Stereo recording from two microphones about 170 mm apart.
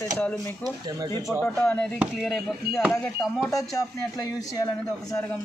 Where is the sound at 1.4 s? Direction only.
10° left (ahead or behind).